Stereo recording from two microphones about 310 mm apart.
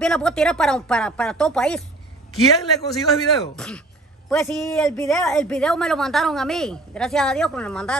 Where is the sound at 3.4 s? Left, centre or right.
Centre.